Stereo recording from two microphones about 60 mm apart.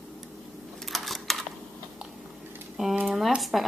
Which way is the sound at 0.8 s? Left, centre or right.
Centre.